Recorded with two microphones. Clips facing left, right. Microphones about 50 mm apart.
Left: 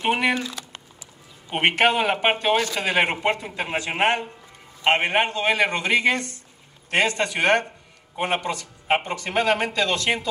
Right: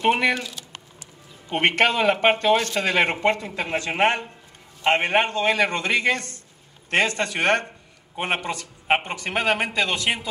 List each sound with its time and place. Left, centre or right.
0.0 s speech: centre
1.5 s speech: centre
8.2 s speech: right